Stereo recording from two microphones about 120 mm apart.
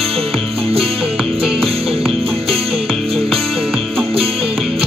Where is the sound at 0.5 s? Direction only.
55° right (ahead or behind).